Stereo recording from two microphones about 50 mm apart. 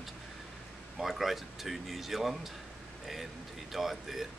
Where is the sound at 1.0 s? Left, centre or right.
Centre.